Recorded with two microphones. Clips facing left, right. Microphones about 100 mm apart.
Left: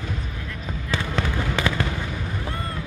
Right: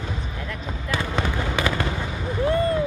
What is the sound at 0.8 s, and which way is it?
Fireworks, 15° right (ahead or behind).